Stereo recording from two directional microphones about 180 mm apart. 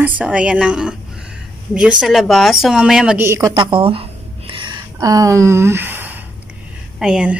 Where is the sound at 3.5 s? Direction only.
25° right (ahead or behind).